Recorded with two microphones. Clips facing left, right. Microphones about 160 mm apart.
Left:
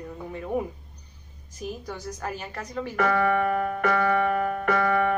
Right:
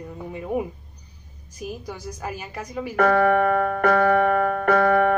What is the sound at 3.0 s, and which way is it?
Music, 50° right (ahead or behind).